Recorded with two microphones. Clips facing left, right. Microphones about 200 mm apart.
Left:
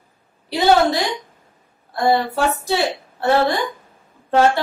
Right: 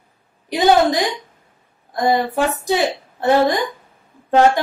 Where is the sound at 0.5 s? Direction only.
15° right (ahead or behind).